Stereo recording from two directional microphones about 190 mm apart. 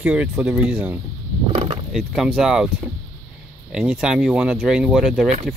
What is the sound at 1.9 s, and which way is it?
Speech, centre (ahead or behind).